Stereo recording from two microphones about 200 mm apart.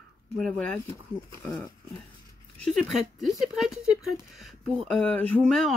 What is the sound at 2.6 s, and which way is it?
Speech, centre (ahead or behind).